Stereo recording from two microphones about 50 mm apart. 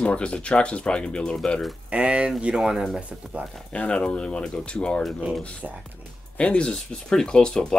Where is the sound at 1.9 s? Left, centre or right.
Right.